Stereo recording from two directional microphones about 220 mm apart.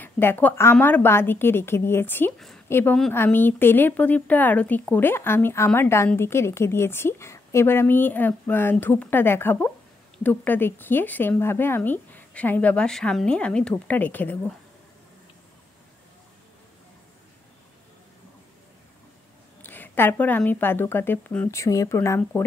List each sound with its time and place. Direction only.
0.0 s speech: 10° left (ahead or behind)
19.6 s speech: 10° left (ahead or behind)